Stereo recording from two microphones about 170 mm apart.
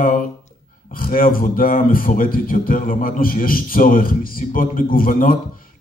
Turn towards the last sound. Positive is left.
turn(degrees=55)  # may be behind; listen again after turning